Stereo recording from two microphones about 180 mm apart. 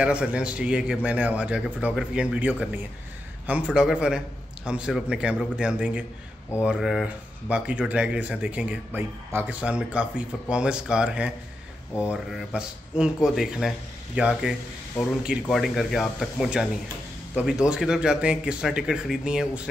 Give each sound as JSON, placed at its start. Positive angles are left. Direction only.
{"t": 0.0, "sound": "speech", "side_deg": -5}